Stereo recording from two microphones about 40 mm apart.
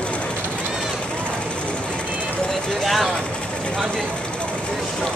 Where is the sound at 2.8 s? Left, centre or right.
Centre.